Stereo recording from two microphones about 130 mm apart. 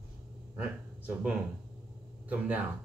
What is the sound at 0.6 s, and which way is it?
Speech, 10° right (ahead or behind).